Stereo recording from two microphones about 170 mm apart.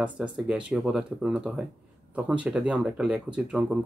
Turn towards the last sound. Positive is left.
turn(degrees=-5)  # may be behind; listen again after turning